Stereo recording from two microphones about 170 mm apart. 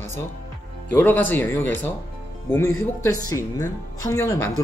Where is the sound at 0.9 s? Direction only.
10° left (ahead or behind).